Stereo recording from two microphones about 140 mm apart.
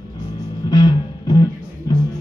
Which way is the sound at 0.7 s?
30° left (ahead or behind).